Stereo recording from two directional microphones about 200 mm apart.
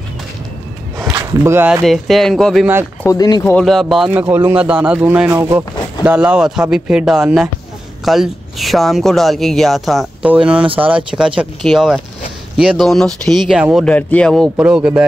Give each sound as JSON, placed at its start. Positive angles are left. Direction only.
{"t": 1.4, "sound": "speech", "side_deg": -10}
{"t": 1.8, "sound": "speech", "side_deg": 0}
{"t": 3.0, "sound": "speech", "side_deg": 20}
{"t": 3.5, "sound": "speech", "side_deg": 0}